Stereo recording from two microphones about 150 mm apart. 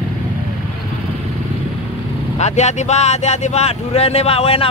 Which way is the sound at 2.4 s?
50° left (ahead or behind).